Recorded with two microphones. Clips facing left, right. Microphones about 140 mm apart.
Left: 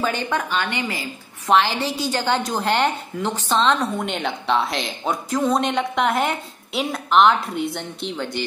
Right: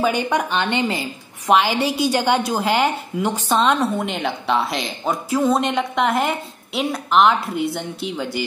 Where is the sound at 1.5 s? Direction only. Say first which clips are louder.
Right 2 dB; 10° right (ahead or behind).